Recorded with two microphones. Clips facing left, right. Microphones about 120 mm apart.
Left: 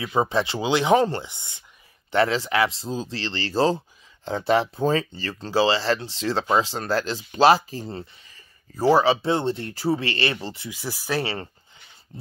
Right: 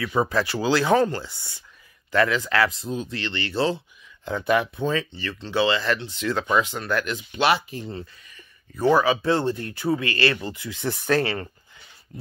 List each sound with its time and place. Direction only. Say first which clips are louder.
0.0 s speech: even; 20° left (ahead or behind)
10.7 s speech: right 5 dB; 5° left (ahead or behind)
12.1 s speech: right 3 dB; 30° left (ahead or behind)